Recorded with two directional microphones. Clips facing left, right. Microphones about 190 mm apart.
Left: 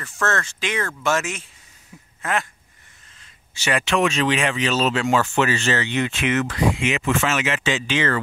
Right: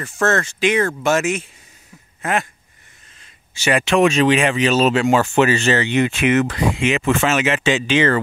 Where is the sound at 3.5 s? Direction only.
15° right (ahead or behind).